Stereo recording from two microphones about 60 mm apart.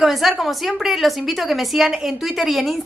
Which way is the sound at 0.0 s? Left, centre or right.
Centre.